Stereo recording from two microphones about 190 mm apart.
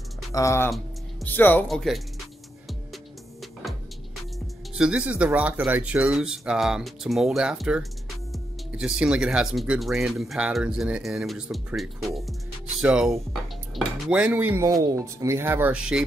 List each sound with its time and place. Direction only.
0.3 s speech: 15° left (ahead or behind)
4.7 s speech: 5° right (ahead or behind)